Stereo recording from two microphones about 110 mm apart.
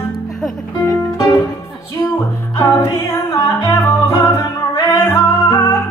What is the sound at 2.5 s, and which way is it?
Music, 25° left (ahead or behind).